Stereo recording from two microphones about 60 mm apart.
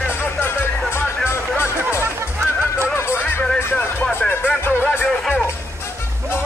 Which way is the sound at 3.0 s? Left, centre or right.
Left.